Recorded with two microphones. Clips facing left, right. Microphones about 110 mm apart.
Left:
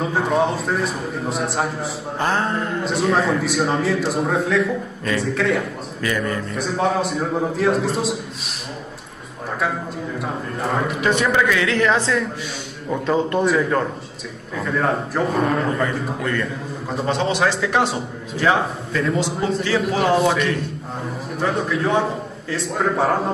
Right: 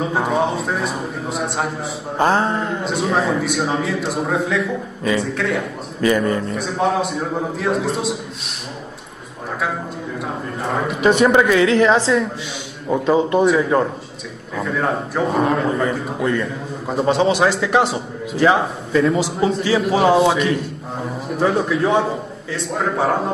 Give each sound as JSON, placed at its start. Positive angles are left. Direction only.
{"t": 0.0, "sound": "a man's voice", "side_deg": 0}
{"t": 2.1, "sound": "speech", "side_deg": -25}
{"t": 2.6, "sound": "a man's voice", "side_deg": -5}
{"t": 6.0, "sound": "speech", "side_deg": -25}
{"t": 6.5, "sound": "a man's voice", "side_deg": 0}
{"t": 10.2, "sound": "a man's voice", "side_deg": 0}
{"t": 11.0, "sound": "a man's voice", "side_deg": -20}